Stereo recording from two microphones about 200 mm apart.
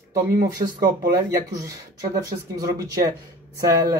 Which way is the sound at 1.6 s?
15° right (ahead or behind).